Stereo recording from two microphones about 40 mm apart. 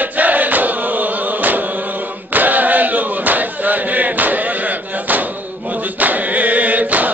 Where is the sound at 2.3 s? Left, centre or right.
Right.